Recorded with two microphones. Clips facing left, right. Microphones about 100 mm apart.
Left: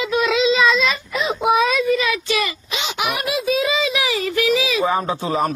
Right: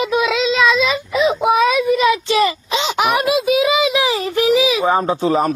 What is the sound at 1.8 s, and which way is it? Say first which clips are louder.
Speech: right 4 dB; 20° right (ahead or behind).